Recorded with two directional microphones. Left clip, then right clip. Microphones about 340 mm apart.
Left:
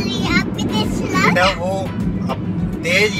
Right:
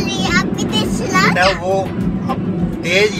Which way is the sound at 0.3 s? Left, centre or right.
Right.